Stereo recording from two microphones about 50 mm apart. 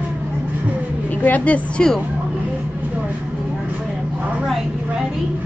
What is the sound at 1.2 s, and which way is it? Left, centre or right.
Speech, left.